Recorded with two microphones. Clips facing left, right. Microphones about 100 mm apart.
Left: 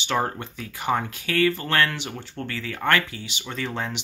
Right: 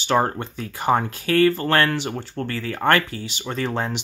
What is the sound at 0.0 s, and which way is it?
Speech, 40° right (ahead or behind).